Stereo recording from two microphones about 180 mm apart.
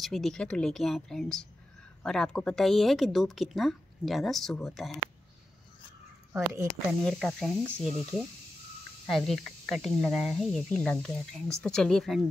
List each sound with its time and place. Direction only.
0.0 s speech: centre (ahead or behind)
6.5 s speech: 15° right (ahead or behind)
7.0 s speech: 5° left (ahead or behind)